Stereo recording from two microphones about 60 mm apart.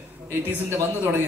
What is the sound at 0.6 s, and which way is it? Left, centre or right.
Speech, right.